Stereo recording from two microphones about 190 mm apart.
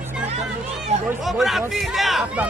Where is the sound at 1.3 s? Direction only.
Centre (ahead or behind).